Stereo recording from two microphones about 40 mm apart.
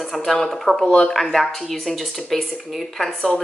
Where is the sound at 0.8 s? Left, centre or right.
Left.